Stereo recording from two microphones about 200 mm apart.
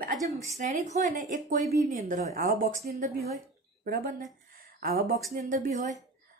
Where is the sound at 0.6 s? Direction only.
35° right (ahead or behind).